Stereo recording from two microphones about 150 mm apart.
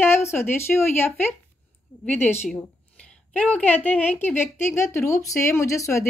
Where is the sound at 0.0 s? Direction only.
15° left (ahead or behind).